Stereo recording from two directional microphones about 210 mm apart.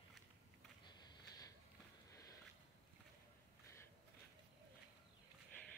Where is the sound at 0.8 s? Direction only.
20° left (ahead or behind).